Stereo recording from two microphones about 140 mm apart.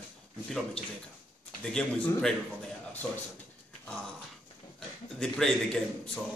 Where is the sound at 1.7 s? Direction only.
5° left (ahead or behind).